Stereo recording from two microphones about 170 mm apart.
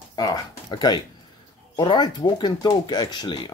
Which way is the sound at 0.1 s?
25° left (ahead or behind).